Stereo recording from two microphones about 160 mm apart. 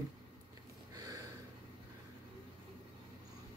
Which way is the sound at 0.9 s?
20° right (ahead or behind).